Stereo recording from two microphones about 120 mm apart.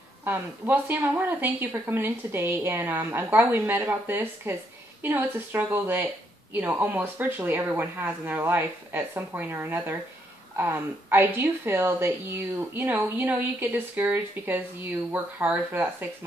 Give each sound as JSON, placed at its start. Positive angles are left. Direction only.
{"t": 0.2, "sound": "speech", "side_deg": -15}